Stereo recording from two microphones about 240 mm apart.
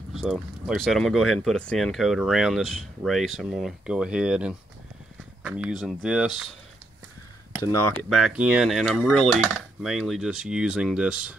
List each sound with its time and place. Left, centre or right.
0.1 s speech: centre
8.0 s speech: centre